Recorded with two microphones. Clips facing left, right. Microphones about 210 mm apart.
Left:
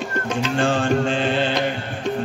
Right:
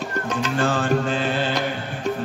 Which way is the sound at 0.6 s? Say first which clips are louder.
Left 2 dB; 25° left (ahead or behind).